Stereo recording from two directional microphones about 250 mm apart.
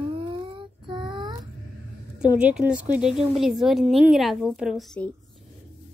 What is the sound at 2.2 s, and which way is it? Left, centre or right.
A woman's voice, centre.